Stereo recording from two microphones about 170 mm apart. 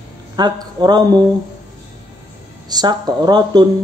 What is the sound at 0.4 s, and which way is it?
Speech, 25° right (ahead or behind).